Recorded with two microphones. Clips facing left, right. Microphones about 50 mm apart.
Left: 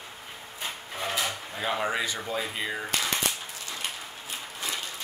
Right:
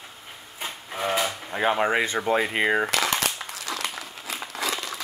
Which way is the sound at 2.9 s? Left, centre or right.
Right.